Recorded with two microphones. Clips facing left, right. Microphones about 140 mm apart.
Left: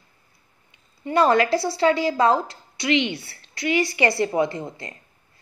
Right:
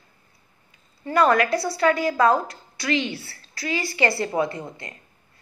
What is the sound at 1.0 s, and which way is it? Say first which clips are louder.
A woman's voice: left 1 dB; 25° left (ahead or behind).